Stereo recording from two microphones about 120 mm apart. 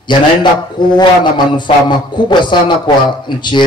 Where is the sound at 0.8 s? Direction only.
40° left (ahead or behind).